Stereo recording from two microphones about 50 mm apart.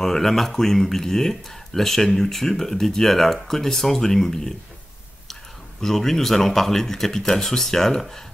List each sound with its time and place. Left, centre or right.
0.0 s speech: centre